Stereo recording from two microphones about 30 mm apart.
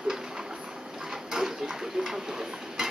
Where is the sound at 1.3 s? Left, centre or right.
Centre.